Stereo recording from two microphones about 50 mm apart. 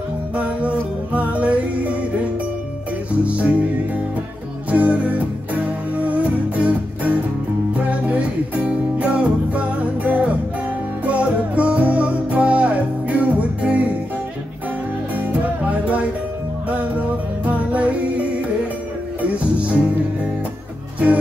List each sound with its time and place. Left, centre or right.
0.4 s music: right
3.3 s music: right
4.6 s music: right
15.4 s music: right
19.3 s music: right